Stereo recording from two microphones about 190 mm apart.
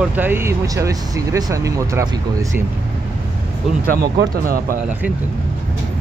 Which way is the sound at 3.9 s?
55° right (ahead or behind).